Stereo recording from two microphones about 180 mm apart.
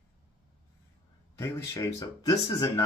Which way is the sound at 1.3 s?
15° left (ahead or behind).